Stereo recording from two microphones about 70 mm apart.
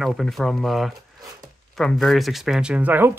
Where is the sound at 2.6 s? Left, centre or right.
Centre.